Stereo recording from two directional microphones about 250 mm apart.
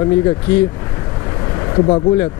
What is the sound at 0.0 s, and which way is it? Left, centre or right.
Speech, centre.